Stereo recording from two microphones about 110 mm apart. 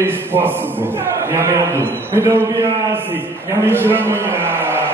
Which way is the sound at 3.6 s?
20° right (ahead or behind).